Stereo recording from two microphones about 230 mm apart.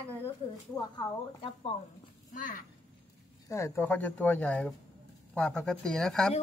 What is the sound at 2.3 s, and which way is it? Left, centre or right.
Speech, left.